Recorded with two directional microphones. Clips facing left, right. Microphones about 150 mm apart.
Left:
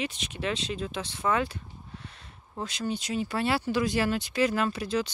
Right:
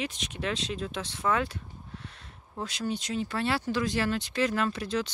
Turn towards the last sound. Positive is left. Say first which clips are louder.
# left 1 dB
turn(degrees=5)  # may be behind; listen again after turning